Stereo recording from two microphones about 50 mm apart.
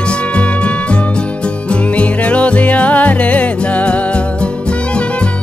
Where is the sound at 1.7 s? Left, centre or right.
Left.